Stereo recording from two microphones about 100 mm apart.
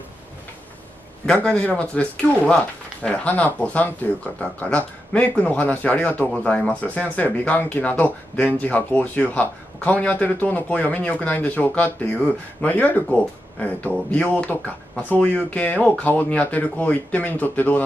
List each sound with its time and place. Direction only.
1.2 s speech: 10° left (ahead or behind)